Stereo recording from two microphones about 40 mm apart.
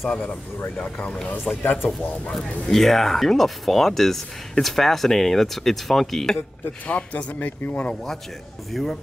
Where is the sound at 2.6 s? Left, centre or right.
Centre.